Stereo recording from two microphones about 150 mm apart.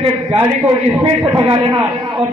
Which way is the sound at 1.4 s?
35° right (ahead or behind).